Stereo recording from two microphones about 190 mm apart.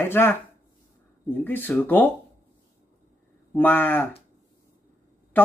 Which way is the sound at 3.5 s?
10° left (ahead or behind).